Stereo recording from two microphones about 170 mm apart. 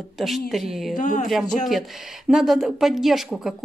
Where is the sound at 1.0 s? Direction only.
50° left (ahead or behind).